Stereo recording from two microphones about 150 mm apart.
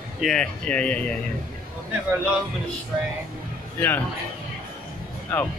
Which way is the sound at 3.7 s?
15° left (ahead or behind).